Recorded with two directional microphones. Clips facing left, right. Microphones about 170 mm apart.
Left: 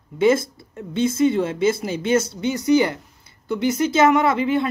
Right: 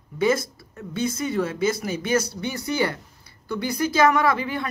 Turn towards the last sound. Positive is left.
turn(degrees=25)  # may be behind; listen again after turning